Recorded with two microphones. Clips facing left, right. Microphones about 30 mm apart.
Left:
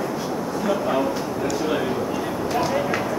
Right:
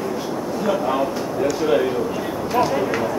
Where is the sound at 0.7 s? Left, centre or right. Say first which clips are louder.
Right 2 dB; centre.